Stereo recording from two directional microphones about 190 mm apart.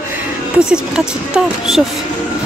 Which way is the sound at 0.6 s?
5° right (ahead or behind).